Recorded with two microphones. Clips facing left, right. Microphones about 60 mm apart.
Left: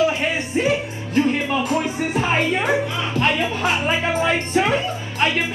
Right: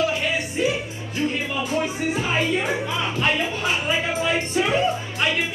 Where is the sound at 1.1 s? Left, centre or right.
Left.